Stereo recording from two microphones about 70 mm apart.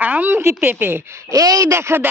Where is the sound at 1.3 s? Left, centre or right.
Right.